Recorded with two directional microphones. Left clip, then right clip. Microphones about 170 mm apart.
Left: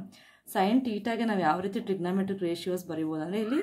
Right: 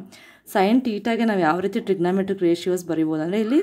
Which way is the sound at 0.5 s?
40° right (ahead or behind).